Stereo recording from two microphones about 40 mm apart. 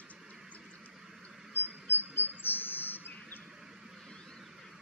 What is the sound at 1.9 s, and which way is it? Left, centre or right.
Bird, left.